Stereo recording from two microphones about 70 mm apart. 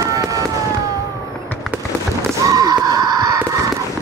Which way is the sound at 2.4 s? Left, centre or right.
Right.